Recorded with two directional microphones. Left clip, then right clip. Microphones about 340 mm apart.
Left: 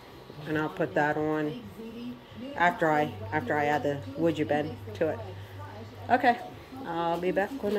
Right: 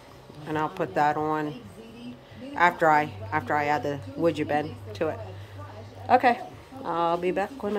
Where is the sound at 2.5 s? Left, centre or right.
Centre.